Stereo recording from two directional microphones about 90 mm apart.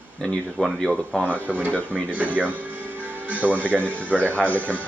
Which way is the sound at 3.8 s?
20° right (ahead or behind).